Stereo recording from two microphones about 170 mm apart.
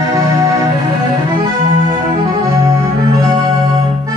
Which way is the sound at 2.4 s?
20° right (ahead or behind).